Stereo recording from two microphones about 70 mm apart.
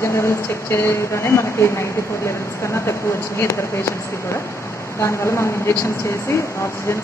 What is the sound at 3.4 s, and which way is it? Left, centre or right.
Speech, left.